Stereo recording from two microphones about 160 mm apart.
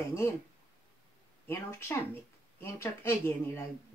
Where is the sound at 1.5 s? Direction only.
15° left (ahead or behind).